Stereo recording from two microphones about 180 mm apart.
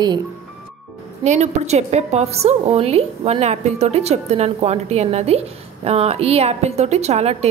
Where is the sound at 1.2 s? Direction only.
40° right (ahead or behind).